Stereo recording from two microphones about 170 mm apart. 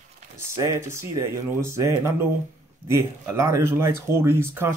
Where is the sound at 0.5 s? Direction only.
20° right (ahead or behind).